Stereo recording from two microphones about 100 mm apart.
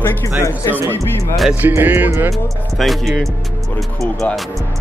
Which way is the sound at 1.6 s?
20° right (ahead or behind).